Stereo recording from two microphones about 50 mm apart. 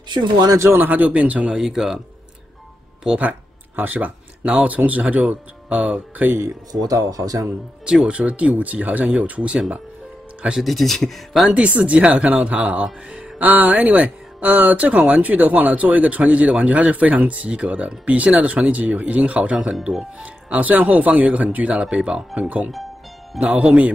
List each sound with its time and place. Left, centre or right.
0.7 s speech: right
1.5 s speech: centre
3.2 s speech: right
6.7 s speech: centre
8.1 s speech: right
10.6 s speech: centre
11.5 s speech: right
19.7 s speech: centre
20.2 s speech: right